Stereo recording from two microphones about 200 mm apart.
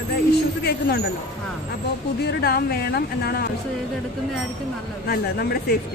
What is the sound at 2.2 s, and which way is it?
Speech, 50° left (ahead or behind).